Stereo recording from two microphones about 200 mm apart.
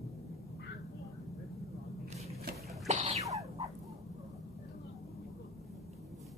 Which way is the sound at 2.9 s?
35° right (ahead or behind).